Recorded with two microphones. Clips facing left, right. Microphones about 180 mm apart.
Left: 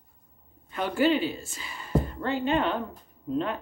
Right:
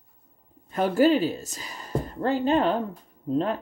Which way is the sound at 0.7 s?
40° right (ahead or behind).